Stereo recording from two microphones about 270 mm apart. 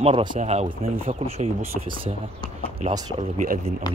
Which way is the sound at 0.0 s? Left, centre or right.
Centre.